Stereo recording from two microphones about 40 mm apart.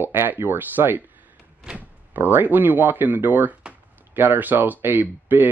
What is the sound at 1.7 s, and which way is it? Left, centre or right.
Door, right.